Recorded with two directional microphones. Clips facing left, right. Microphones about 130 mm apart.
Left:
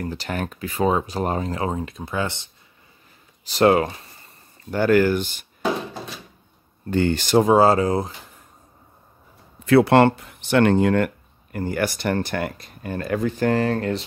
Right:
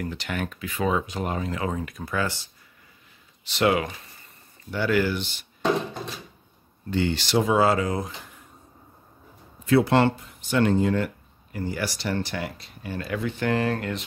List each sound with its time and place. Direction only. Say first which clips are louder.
0.0 s speech: left 3 dB; 35° left (ahead or behind); by 2.5 s 20° left (ahead or behind)
3.4 s speech: left 6 dB; 40° left (ahead or behind)
4.6 s speech: left 6 dB; 45° left (ahead or behind)
5.6 s a sound: even; centre (ahead or behind)
6.9 s speech: left 5 dB; 50° left (ahead or behind)
9.7 s speech: left 5 dB; 65° left (ahead or behind); by 14.0 s 35° left (ahead or behind)